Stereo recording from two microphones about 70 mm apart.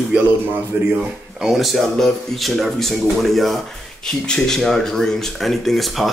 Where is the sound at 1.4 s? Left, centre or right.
Centre.